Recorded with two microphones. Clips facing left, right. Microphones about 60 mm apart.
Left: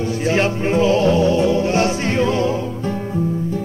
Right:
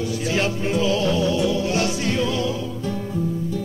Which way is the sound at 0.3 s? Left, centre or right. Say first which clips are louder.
Left 5 dB; left.